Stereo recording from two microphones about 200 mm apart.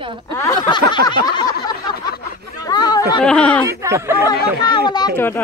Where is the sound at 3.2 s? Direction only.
5° left (ahead or behind).